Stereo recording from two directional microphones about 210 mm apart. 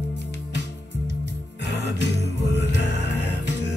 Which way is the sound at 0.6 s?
55° right (ahead or behind).